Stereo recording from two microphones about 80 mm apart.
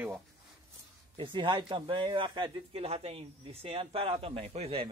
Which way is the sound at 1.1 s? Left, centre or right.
Right.